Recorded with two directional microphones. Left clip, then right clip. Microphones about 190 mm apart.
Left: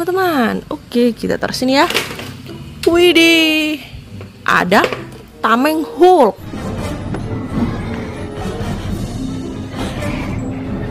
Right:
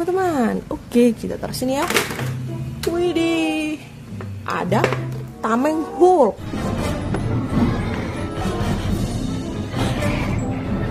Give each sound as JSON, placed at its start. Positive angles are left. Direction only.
{"t": 0.0, "sound": "speech", "side_deg": 5}
{"t": 3.0, "sound": "speech", "side_deg": 20}
{"t": 5.4, "sound": "music", "side_deg": 5}